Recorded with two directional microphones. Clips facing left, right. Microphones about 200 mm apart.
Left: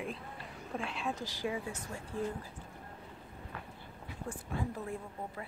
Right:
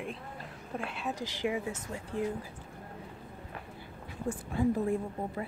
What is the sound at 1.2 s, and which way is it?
Speech, 20° right (ahead or behind).